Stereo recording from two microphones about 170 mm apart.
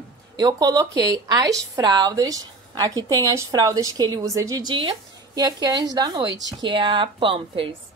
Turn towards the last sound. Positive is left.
turn(degrees=-30)  # may be behind; listen again after turning